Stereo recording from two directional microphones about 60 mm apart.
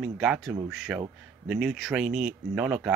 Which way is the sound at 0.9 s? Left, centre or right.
Right.